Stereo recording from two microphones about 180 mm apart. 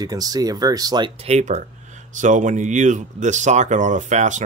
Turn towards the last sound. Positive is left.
turn(degrees=-40)  # may be behind; listen again after turning